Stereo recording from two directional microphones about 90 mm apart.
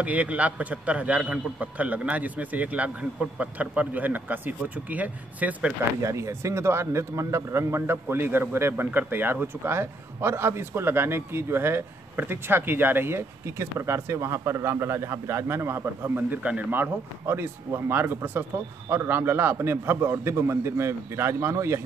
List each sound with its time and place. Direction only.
0.0 s a man's voice: 15° right (ahead or behind)
6.0 s a man's voice: 35° right (ahead or behind)